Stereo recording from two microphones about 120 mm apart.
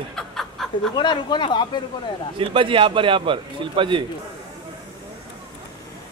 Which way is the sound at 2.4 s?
45° right (ahead or behind).